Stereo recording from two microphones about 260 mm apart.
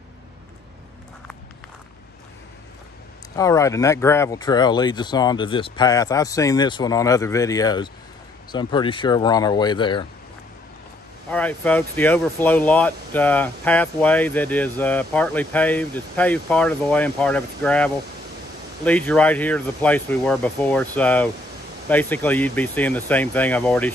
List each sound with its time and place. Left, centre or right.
3.3 s speech: centre
11.2 s speech: centre